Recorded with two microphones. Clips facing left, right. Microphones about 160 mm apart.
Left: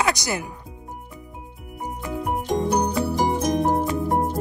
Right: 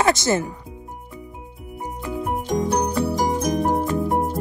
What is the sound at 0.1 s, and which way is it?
Speech, 20° right (ahead or behind).